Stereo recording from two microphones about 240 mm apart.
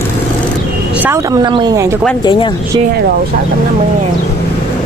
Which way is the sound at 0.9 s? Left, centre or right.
Centre.